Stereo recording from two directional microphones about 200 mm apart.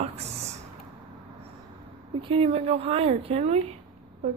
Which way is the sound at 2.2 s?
30° right (ahead or behind).